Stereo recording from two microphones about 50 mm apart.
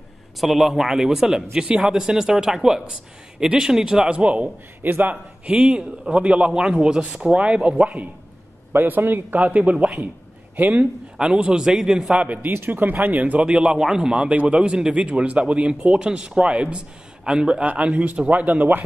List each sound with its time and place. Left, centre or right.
0.4 s a man's voice: centre; by 4.5 s right
4.8 s a man's voice: right
5.1 s speech: right
8.7 s a man's voice: right; by 12.2 s centre
12.2 s a man's voice: right
12.5 s a man's voice: right
13.5 s a man's voice: centre
14.3 s a man's voice: right